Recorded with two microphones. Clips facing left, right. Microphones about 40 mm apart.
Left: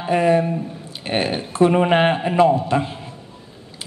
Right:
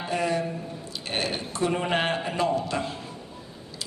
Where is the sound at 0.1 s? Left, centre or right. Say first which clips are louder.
Left 10 dB; left.